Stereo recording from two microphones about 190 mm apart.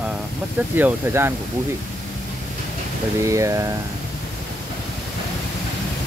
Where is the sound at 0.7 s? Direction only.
10° right (ahead or behind).